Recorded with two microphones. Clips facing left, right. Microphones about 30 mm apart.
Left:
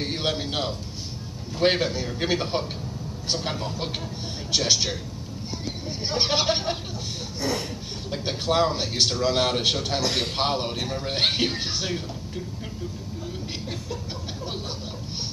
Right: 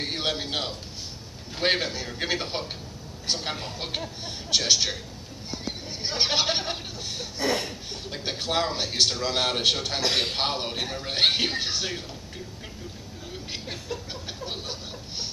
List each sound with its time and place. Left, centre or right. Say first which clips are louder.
0.0 s a sound: left 1 dB; centre
1.6 s a man's voice: left 3 dB; centre
3.5 s a man's voice: left 4 dB; centre
4.5 s a man's voice: even; centre
7.3 s a sound: right 2 dB; right
8.1 s a man's voice: left 3 dB; centre
10.0 s a man's voice: right 4 dB; right
10.3 s a man's voice: left 2 dB; centre